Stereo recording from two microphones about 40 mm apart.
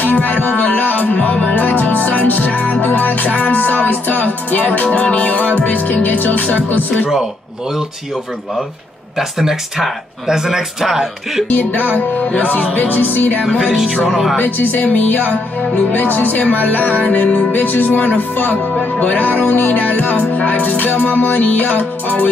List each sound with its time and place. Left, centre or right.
0.0 s music: left
9.4 s a man's voice: centre
11.4 s music: left
12.2 s speech: left
12.7 s music: left
13.5 s a man's voice: centre
14.4 s music: left
17.1 s speech: left
17.6 s music: left
21.4 s music: left